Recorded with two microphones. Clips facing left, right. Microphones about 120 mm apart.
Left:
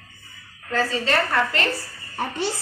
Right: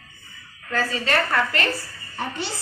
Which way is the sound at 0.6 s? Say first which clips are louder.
Left 2 dB; 25° left (ahead or behind).